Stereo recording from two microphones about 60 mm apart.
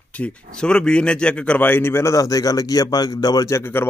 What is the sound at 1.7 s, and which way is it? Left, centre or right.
Speech, left.